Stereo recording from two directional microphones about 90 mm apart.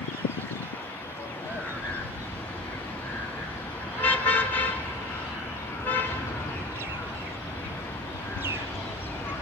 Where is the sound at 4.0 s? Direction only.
15° left (ahead or behind).